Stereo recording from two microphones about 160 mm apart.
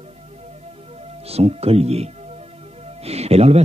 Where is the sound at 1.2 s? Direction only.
40° right (ahead or behind).